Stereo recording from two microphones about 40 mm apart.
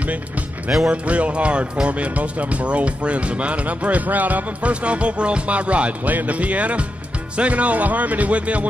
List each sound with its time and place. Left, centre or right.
0.8 s speech: right